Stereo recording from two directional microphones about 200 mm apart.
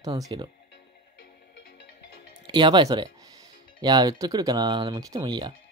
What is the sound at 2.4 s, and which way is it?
Speech, 25° right (ahead or behind).